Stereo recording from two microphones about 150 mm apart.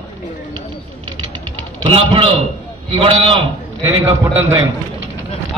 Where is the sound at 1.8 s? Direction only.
40° right (ahead or behind).